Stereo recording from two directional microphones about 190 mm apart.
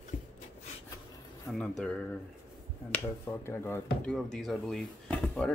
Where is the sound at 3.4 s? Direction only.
10° left (ahead or behind).